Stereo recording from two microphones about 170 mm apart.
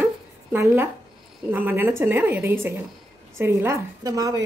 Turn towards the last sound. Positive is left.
turn(degrees=-20)  # may be behind; listen again after turning